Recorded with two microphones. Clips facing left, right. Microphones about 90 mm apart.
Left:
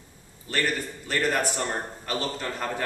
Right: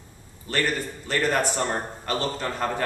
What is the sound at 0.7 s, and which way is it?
Speech, 5° left (ahead or behind).